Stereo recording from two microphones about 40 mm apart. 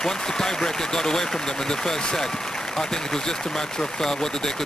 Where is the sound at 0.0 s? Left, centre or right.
Centre.